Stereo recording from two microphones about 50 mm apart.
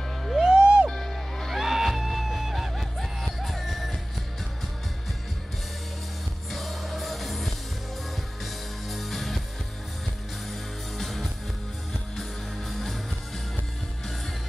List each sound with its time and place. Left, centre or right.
0.4 s music: centre
0.8 s music: centre
6.5 s music: centre
8.8 s music: centre
10.5 s music: centre